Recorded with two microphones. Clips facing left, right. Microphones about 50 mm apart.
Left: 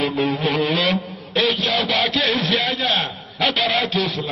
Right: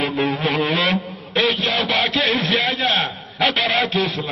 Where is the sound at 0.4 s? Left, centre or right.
Centre.